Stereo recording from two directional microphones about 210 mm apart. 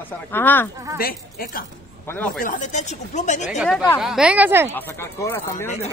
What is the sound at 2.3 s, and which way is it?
Speech, 40° left (ahead or behind).